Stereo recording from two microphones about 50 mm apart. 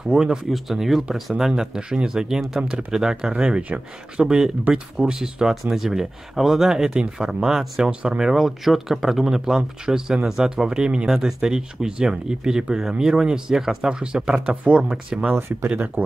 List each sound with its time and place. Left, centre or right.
0.1 s speech: centre
0.5 s speech: centre
8.3 s speech: centre
15.3 s speech: right